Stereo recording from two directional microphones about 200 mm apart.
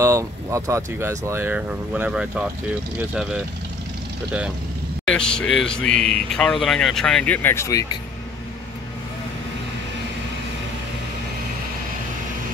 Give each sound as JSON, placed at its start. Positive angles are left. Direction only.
{"t": 0.0, "sound": "speech", "side_deg": -15}
{"t": 5.0, "sound": "speech", "side_deg": 5}